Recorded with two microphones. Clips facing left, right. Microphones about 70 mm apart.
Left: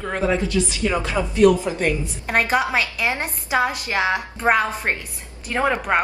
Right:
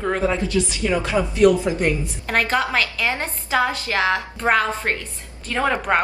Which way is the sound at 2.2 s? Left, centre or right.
Centre.